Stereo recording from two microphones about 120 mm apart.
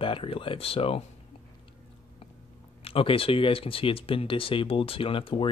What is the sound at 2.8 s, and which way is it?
Speech, 50° left (ahead or behind).